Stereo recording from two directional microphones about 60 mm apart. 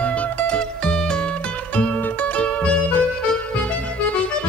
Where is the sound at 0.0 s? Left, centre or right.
Left.